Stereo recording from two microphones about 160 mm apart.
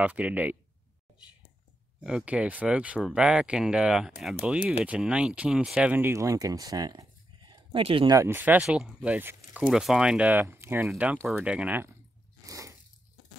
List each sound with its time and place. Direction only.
0.0 s speech: 10° right (ahead or behind)
2.0 s speech: 5° right (ahead or behind); by 8.2 s 35° right (ahead or behind)
8.2 s speech: 15° right (ahead or behind)
12.4 s biting: 20° right (ahead or behind)